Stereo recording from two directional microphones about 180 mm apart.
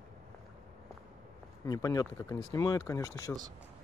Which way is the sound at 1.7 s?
20° left (ahead or behind).